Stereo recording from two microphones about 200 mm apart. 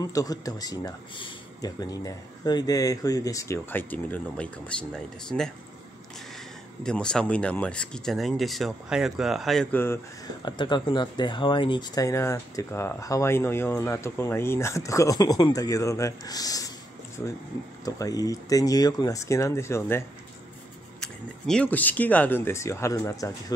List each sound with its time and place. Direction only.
0.0 s speech: 20° left (ahead or behind); by 5.5 s 5° left (ahead or behind)
6.8 s speech: 5° left (ahead or behind)
10.4 s speech: 20° left (ahead or behind)
17.8 s speech: 15° left (ahead or behind)